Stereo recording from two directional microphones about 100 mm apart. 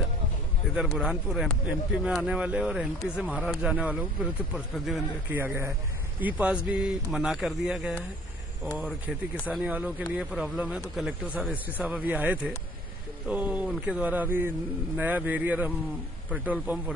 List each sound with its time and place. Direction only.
0.7 s speech: 5° right (ahead or behind)
5.3 s speech: 20° right (ahead or behind)